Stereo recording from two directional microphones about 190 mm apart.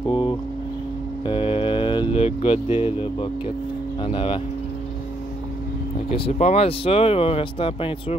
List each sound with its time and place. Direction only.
0.1 s vehicle: 25° left (ahead or behind)
1.2 s a sound: 30° left (ahead or behind)
4.0 s speech: 25° left (ahead or behind)
6.0 s speech: 30° left (ahead or behind)